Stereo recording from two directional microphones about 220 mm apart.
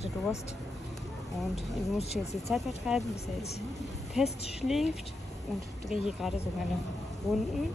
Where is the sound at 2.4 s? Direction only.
Centre (ahead or behind).